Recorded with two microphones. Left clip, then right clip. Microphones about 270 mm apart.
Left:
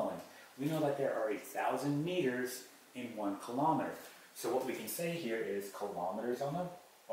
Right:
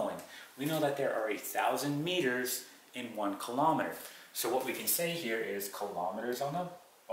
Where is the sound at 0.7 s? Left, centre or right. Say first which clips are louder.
Right 2 dB; centre.